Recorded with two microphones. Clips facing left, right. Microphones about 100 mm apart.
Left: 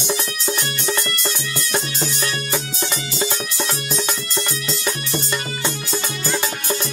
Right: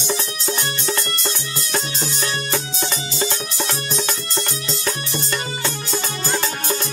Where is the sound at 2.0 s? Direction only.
30° right (ahead or behind).